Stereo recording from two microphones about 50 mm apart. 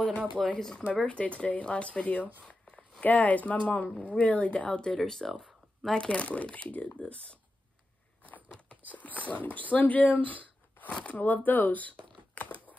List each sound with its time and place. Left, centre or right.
0.4 s speech: centre
0.9 s speech: left
4.9 s speech: centre; by 7.3 s left
8.8 s speech: left
12.4 s crumpling: left